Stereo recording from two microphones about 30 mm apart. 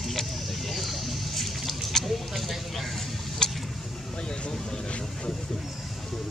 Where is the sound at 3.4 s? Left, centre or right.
Left.